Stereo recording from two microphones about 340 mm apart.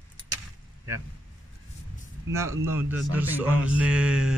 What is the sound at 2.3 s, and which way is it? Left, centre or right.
A man's voice, centre.